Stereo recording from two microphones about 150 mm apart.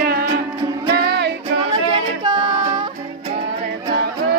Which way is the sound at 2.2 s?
30° right (ahead or behind).